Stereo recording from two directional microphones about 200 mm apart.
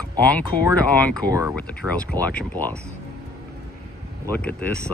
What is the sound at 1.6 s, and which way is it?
Speech, 5° left (ahead or behind).